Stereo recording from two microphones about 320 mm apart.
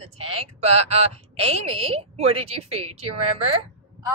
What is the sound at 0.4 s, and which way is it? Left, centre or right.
A woman's voice, centre.